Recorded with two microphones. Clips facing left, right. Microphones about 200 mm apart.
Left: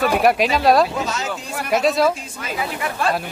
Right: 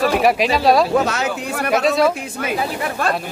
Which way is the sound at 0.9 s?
65° right (ahead or behind).